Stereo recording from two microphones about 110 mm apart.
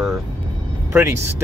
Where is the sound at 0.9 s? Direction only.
20° right (ahead or behind).